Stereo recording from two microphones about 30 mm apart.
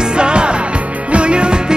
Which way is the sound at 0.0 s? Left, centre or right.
Right.